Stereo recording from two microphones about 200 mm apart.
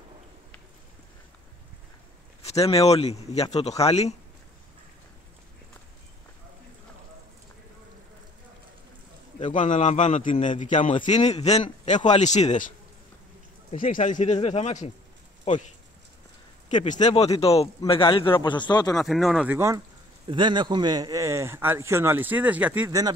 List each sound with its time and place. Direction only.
2.4 s a man's voice: 30° left (ahead or behind)
9.4 s a man's voice: 40° left (ahead or behind)
13.7 s a man's voice: 40° left (ahead or behind)
16.8 s speech: 35° left (ahead or behind); by 19.0 s 20° left (ahead or behind)
19.0 s speech: centre (ahead or behind); by 23.1 s 15° right (ahead or behind)